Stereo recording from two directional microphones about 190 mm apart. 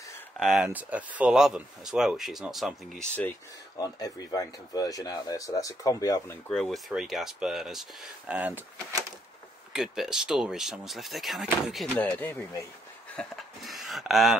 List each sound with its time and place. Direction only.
0.4 s speech: centre (ahead or behind)
3.7 s speech: 20° left (ahead or behind)
6.5 s speech: centre (ahead or behind)
9.7 s speech: 5° right (ahead or behind)